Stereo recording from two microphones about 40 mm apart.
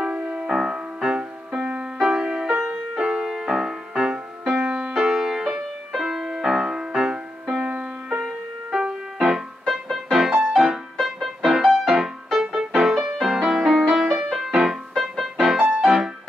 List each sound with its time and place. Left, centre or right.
0.5 s music: centre
3.2 s music: centre
4.9 s music: centre
7.6 s music: right
8.2 s music: centre
9.8 s music: centre
10.1 s music: centre